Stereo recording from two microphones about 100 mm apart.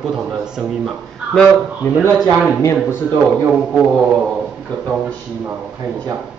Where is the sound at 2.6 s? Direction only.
25° left (ahead or behind).